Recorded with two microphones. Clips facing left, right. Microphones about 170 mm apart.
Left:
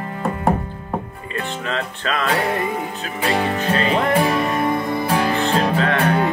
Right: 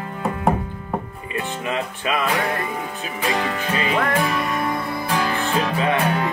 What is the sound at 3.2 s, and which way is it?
Music, 30° left (ahead or behind).